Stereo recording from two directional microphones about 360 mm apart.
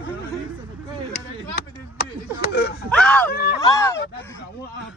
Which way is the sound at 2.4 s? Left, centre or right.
Left.